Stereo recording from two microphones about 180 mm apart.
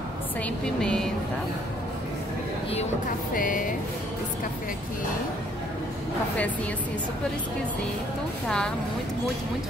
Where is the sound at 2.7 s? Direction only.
50° left (ahead or behind).